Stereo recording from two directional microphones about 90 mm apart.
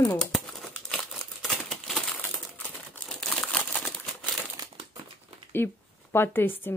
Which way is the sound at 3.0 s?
5° left (ahead or behind).